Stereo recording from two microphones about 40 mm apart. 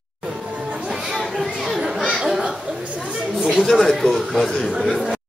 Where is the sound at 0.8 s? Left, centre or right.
Centre.